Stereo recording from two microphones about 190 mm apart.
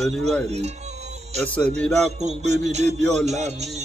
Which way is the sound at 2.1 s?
35° right (ahead or behind).